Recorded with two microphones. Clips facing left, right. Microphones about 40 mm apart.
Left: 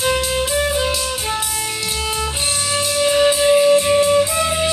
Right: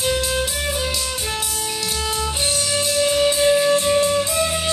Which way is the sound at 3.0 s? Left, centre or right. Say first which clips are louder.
Left 3 dB; left.